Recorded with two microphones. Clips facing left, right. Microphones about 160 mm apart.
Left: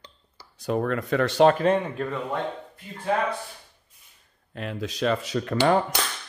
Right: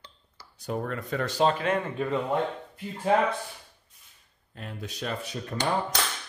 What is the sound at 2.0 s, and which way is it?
Speech, 5° right (ahead or behind).